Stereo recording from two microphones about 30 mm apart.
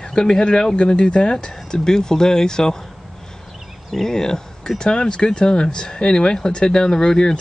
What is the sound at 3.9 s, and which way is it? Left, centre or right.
Speech, centre.